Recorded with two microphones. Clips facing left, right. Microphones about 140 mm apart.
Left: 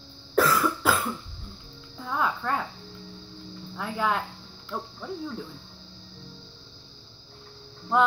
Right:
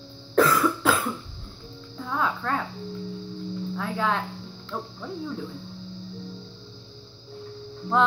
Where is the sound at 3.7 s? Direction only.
10° left (ahead or behind).